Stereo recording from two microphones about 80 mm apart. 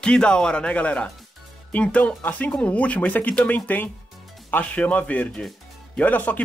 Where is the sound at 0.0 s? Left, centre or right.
Centre.